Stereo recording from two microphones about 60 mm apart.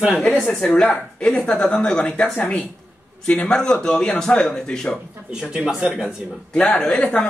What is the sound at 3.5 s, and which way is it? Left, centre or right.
A man's voice, centre.